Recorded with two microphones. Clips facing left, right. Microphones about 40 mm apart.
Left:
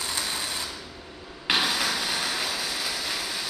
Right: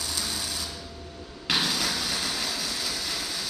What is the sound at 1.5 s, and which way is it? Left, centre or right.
Vehicle, left.